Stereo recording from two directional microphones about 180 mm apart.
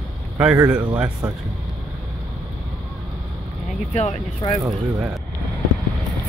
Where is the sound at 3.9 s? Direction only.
40° left (ahead or behind).